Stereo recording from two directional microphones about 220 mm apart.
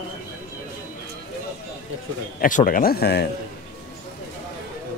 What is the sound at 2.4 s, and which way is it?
Speech, 40° left (ahead or behind).